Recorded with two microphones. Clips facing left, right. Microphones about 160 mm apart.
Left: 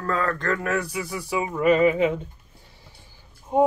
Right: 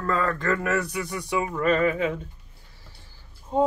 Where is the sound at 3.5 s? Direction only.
15° left (ahead or behind).